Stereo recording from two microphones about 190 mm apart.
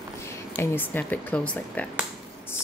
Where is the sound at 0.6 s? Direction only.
10° left (ahead or behind).